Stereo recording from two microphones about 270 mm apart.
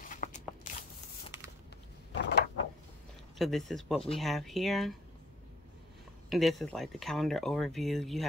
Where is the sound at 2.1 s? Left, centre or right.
Left.